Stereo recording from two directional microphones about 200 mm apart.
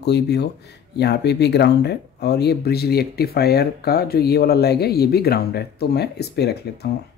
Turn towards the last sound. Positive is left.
turn(degrees=55)  # may be behind; listen again after turning